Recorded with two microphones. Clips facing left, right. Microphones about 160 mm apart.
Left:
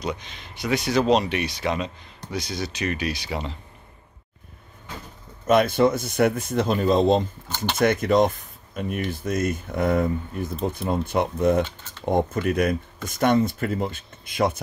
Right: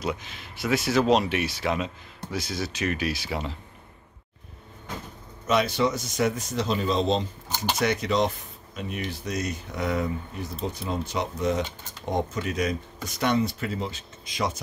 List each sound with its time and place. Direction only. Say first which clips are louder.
0.0 s speech: left 1 dB; 5° right (ahead or behind)
5.5 s speech: left 5 dB; 50° left (ahead or behind)